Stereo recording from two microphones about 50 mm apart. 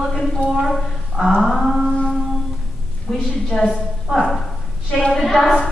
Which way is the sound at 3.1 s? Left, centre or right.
Centre.